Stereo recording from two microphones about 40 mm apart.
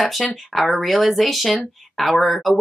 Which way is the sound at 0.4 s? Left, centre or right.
Centre.